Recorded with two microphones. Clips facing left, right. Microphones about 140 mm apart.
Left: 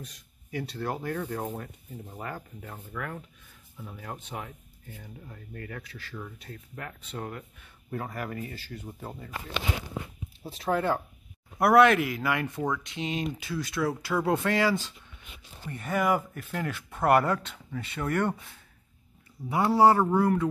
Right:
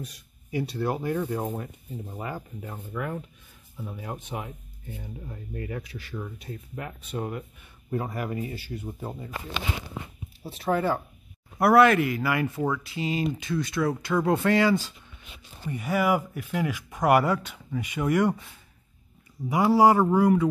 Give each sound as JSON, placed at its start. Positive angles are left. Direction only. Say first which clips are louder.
{"t": 0.0, "sound": "speech", "louder": "right 5 dB", "side_deg": -10}
{"t": 10.4, "sound": "speech", "louder": "right 2 dB", "side_deg": 0}
{"t": 19.5, "sound": "speech", "louder": "right 2 dB", "side_deg": -10}